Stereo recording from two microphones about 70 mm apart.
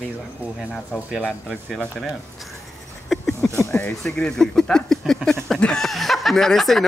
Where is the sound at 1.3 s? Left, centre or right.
Centre.